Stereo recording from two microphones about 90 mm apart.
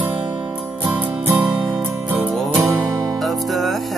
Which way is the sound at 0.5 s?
15° right (ahead or behind).